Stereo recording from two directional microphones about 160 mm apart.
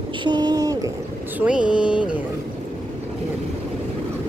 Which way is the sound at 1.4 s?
5° right (ahead or behind).